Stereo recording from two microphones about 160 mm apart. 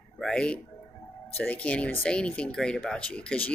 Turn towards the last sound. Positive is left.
turn(degrees=5)  # may be behind; listen again after turning